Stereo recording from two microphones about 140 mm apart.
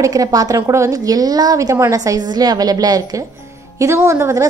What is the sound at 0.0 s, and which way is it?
A woman's voice, 25° right (ahead or behind).